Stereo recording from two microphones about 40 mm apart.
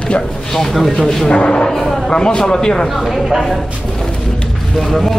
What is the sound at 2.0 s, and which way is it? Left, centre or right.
Speech, centre.